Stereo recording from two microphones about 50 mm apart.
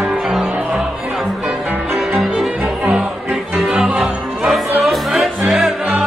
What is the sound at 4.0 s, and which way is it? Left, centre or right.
Music, centre.